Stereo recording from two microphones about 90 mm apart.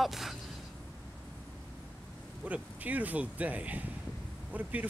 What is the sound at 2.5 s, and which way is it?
Speech, 15° right (ahead or behind).